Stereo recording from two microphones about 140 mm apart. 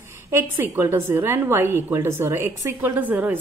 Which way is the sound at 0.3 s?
15° right (ahead or behind).